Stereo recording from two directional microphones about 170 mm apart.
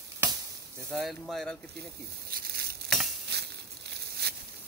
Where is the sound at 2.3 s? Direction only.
65° right (ahead or behind).